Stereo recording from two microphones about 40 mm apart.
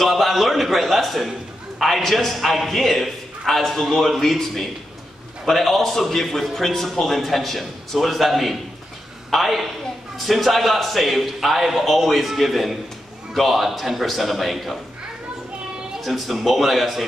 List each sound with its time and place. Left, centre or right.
0.0 s a man's voice: centre
16.0 s a man's voice: centre